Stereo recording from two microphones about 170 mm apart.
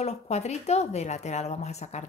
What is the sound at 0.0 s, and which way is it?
Speech, 40° left (ahead or behind).